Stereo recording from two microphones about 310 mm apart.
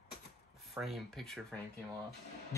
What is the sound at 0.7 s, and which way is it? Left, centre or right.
Speech, centre.